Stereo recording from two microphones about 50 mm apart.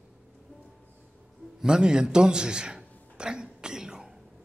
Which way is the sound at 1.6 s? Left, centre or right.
Centre.